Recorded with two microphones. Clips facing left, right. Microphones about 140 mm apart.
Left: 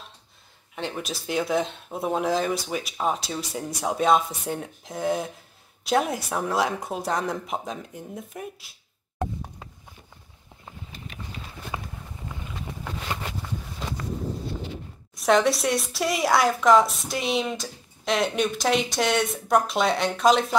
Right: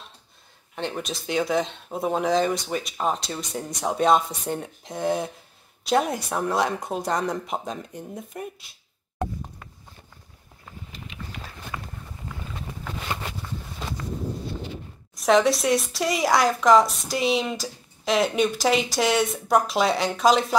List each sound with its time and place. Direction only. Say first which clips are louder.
0.7 s a woman's voice: right 1 dB; centre (ahead or behind)
11.7 s a sound: left 2 dB; 20° left (ahead or behind)
15.1 s a woman's voice: right 1 dB; centre (ahead or behind)